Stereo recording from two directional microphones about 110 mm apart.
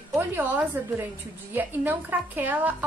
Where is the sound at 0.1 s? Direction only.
20° right (ahead or behind).